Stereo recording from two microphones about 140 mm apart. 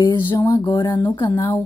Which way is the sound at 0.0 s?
35° left (ahead or behind).